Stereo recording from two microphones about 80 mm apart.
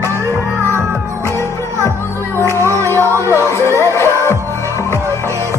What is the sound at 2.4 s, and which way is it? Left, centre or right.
Music, left.